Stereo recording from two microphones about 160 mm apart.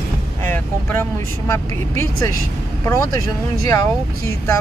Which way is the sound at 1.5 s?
15° left (ahead or behind).